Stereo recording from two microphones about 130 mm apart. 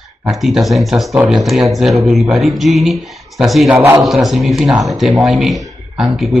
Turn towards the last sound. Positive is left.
turn(degrees=0)  # may be behind; listen again after turning